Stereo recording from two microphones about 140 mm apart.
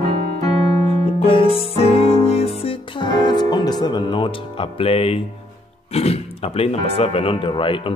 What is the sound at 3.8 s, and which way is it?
Speech, 30° left (ahead or behind).